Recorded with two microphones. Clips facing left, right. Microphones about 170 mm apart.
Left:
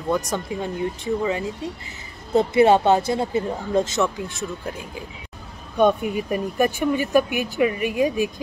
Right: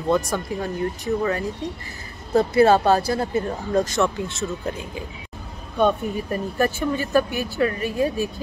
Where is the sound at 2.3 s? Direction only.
25° left (ahead or behind).